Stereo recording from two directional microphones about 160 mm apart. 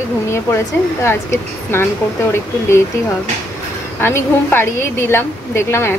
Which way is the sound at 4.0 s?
15° left (ahead or behind).